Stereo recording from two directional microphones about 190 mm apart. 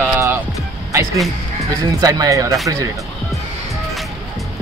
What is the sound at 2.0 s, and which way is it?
Speech, 20° right (ahead or behind).